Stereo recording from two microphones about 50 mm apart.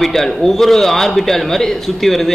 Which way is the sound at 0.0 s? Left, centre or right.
Centre.